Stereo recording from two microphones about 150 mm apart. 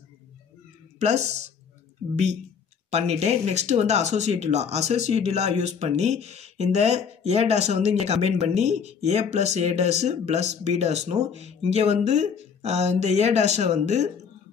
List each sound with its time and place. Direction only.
0.9 s speech: 50° right (ahead or behind)
2.9 s speech: 45° right (ahead or behind)